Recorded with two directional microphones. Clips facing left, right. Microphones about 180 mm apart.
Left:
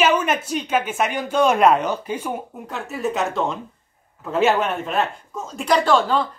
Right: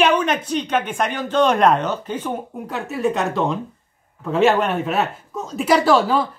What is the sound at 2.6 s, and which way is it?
Speech, centre (ahead or behind).